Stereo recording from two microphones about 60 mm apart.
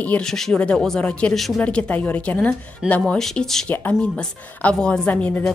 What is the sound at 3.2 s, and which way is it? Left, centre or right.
Speech, centre.